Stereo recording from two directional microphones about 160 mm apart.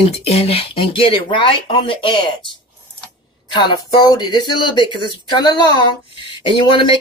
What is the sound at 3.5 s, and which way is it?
Speech, 25° left (ahead or behind).